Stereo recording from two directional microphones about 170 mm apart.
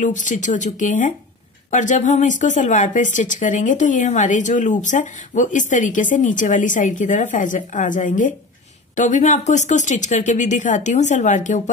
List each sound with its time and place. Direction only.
0.0 s speech: 50° left (ahead or behind)